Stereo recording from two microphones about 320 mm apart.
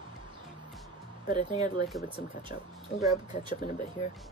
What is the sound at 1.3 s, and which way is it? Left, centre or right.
Speech, centre.